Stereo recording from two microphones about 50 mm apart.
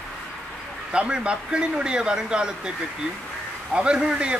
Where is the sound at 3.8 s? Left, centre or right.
Right.